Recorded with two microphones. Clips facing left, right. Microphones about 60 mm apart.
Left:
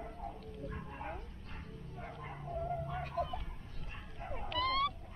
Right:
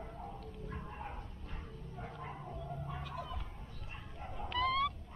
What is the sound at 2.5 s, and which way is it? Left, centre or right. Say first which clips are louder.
Emergency vehicle: left 7 dB; left.